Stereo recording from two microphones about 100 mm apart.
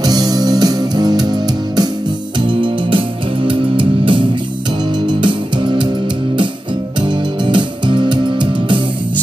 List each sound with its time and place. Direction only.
0.0 s music: 40° right (ahead or behind)
2.4 s music: 55° right (ahead or behind)
7.0 s music: 50° right (ahead or behind)